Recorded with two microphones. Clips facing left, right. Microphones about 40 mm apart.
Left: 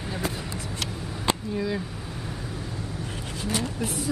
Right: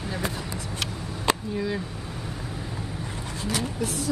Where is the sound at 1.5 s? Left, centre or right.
Centre.